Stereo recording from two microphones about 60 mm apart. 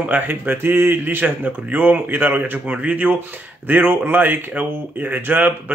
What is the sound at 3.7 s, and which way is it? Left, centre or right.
Speech, right.